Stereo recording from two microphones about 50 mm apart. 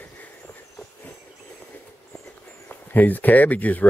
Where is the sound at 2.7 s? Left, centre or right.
Left.